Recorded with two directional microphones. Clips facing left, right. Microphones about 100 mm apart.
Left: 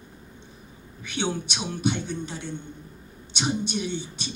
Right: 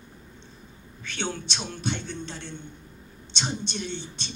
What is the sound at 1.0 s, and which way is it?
Speech, 15° left (ahead or behind).